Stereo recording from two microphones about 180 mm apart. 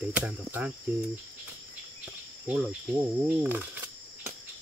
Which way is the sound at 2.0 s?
10° right (ahead or behind).